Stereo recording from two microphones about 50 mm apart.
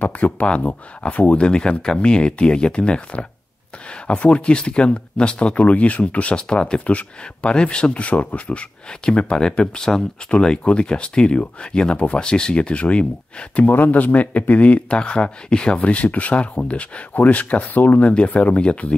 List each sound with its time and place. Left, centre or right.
0.0 s speech: left
1.5 s speech: centre
6.3 s speech: centre
13.7 s speech: left